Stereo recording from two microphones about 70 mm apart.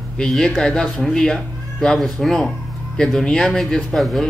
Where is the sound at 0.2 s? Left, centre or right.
Centre.